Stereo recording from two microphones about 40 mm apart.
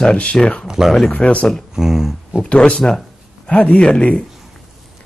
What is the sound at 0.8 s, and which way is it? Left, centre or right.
Speech, centre.